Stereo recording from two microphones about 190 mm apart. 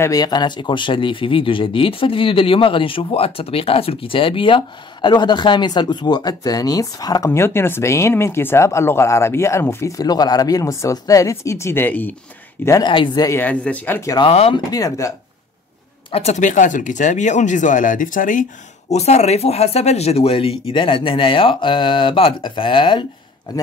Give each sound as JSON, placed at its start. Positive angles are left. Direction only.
{"t": 0.0, "sound": "speech", "side_deg": 20}
{"t": 12.6, "sound": "speech", "side_deg": 20}
{"t": 14.1, "sound": "speech", "side_deg": 30}
{"t": 14.7, "sound": "speech", "side_deg": 20}
{"t": 16.1, "sound": "speech", "side_deg": 35}